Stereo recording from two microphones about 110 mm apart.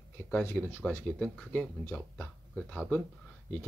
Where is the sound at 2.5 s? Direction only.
10° left (ahead or behind).